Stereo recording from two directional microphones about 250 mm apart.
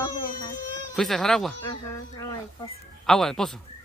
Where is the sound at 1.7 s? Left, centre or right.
Centre.